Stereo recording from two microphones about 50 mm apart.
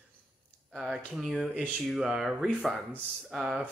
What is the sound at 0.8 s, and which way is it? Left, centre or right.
Speech, centre.